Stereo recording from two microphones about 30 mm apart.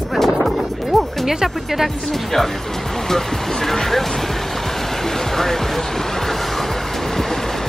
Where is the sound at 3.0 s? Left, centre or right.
Centre.